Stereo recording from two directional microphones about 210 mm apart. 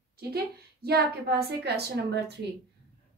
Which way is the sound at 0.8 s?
50° right (ahead or behind).